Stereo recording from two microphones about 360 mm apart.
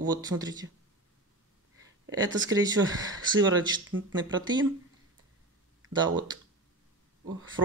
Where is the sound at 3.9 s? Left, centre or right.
Right.